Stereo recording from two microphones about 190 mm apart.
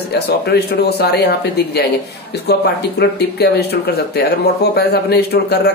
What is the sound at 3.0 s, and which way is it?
Speech, 60° left (ahead or behind).